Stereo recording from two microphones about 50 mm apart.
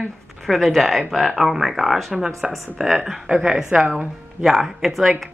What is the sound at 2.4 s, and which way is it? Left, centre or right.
Speech, centre.